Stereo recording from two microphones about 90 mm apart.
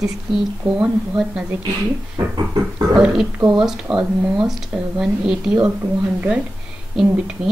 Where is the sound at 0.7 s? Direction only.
15° right (ahead or behind).